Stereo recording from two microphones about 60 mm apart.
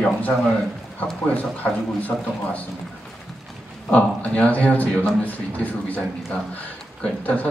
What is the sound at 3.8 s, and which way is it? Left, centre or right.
A man's voice, left.